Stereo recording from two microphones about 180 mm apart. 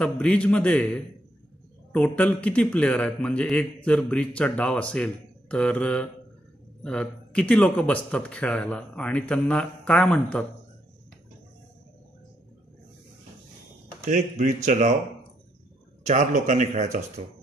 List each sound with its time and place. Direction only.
0.0 s a man's voice: 5° left (ahead or behind)
14.0 s speech: 40° right (ahead or behind)
16.1 s speech: 45° right (ahead or behind)